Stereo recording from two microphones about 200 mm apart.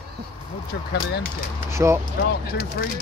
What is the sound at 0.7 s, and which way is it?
Speech, 55° left (ahead or behind).